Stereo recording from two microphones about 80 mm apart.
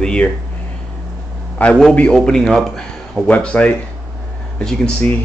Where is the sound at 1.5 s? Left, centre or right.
Centre.